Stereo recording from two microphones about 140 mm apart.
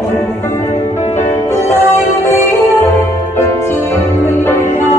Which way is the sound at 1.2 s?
20° left (ahead or behind).